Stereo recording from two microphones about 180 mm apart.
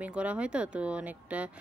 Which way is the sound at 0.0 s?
5° right (ahead or behind).